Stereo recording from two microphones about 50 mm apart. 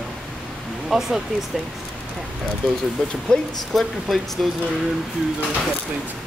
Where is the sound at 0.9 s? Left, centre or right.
Centre.